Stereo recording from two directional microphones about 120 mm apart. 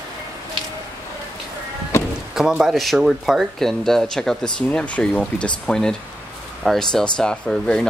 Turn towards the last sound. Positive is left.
turn(degrees=5)  # may be behind; listen again after turning